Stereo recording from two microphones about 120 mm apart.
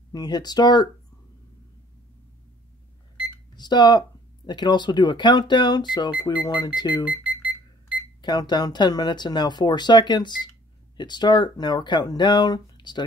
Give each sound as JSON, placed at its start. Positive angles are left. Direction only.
{"t": 0.1, "sound": "speech", "side_deg": 35}
{"t": 3.5, "sound": "speech", "side_deg": 35}
{"t": 8.2, "sound": "speech", "side_deg": 35}